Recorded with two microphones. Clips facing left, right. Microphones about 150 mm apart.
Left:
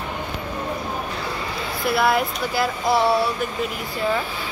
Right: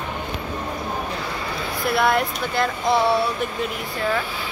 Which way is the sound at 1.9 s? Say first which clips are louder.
Even; centre (ahead or behind).